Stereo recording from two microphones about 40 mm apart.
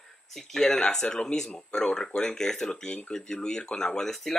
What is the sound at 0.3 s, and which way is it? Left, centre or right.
Speech, centre.